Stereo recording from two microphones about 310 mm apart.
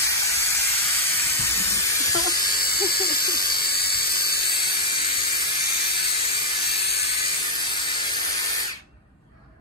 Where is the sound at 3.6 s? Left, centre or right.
Left.